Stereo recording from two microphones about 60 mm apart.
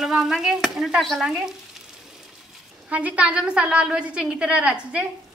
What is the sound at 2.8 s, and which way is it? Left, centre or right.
A woman's voice, right.